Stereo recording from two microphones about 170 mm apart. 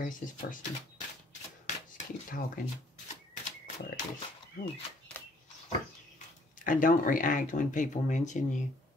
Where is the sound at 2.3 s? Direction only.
55° left (ahead or behind).